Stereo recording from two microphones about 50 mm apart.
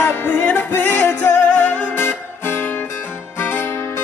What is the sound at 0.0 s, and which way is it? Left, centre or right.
Music, left.